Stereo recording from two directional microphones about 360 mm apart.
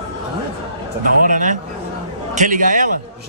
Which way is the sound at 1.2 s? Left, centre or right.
Right.